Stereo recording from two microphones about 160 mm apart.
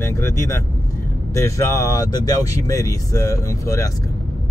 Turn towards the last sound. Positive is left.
turn(degrees=20)  # may be behind; listen again after turning